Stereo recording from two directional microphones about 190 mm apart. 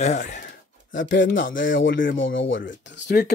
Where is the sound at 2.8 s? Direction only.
70° left (ahead or behind).